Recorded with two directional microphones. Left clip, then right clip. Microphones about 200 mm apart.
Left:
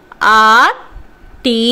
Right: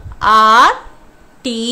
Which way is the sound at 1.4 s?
15° left (ahead or behind).